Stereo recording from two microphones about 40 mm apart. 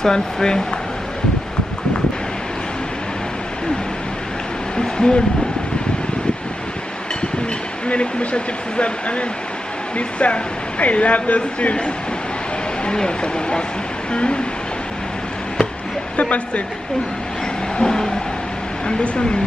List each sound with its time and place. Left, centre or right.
0.0 s speech: centre
4.7 s a sound: centre
7.9 s speech: left
16.2 s speech: left
17.7 s speech: centre